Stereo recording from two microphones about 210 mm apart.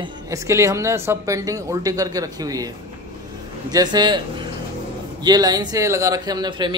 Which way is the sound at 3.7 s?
20° right (ahead or behind).